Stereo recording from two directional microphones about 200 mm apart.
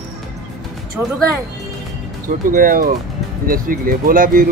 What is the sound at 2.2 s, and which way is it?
Speech, 45° right (ahead or behind).